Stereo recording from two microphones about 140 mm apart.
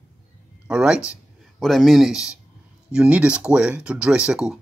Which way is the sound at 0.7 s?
5° right (ahead or behind).